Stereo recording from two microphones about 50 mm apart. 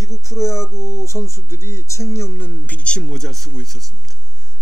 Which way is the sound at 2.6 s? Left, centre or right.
Left.